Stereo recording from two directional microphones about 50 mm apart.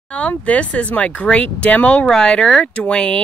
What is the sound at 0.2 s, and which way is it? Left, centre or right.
Speech, left.